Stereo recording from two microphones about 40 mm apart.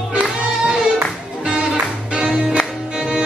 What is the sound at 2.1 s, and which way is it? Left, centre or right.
Music, right.